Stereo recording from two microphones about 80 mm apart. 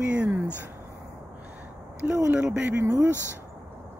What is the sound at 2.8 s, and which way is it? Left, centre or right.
Speech, right.